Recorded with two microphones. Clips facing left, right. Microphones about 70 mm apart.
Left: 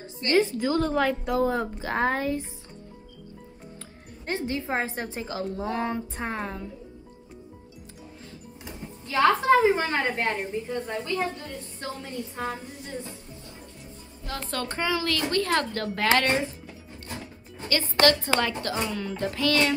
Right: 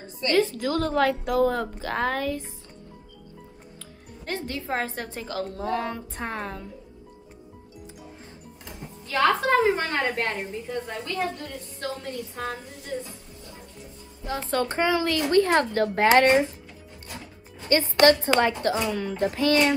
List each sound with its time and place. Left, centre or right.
0.4 s speech: centre
4.6 s a woman's voice: centre
8.6 s speech: centre
14.2 s a woman's voice: centre
17.6 s a woman's voice: right